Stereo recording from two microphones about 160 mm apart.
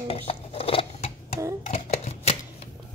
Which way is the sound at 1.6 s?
40° left (ahead or behind).